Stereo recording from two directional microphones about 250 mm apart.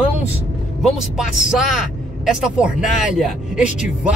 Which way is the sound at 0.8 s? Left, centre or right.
Centre.